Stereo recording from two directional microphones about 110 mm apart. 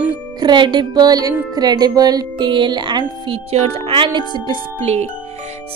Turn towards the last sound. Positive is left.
turn(degrees=-70)  # may be behind; listen again after turning